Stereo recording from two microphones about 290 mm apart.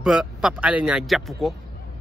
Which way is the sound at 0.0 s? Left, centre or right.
Centre.